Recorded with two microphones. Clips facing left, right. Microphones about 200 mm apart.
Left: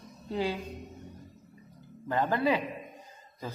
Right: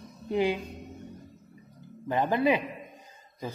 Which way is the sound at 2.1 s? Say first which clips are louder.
Right 2 dB; 15° right (ahead or behind).